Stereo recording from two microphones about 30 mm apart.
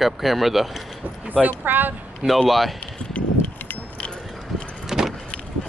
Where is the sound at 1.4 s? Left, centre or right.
Right.